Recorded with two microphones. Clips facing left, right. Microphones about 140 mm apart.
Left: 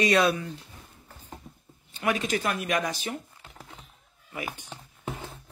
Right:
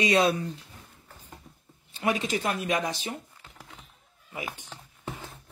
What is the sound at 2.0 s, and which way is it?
Speech, 25° right (ahead or behind).